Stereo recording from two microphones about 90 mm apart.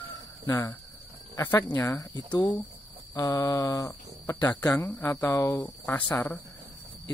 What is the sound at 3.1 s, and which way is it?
Speech, 40° left (ahead or behind).